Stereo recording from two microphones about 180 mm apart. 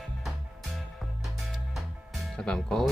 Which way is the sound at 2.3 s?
5° left (ahead or behind).